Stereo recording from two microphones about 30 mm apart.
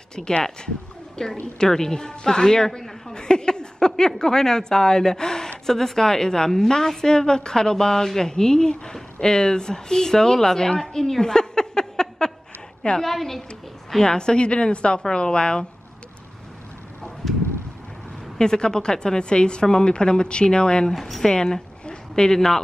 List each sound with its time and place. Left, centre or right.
0.1 s a woman's voice: left
7.7 s a woman's voice: centre
12.2 s a sound: left
13.0 s a woman's voice: centre
14.0 s a woman's voice: left
17.2 s a sound: centre
18.4 s speech: left
21.0 s a woman's voice: centre
21.3 s speech: left